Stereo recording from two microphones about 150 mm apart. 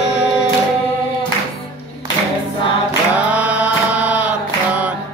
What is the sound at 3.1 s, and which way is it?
Mantra, 10° right (ahead or behind).